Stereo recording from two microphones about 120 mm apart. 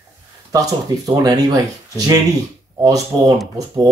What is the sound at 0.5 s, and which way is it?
Speech, 30° right (ahead or behind).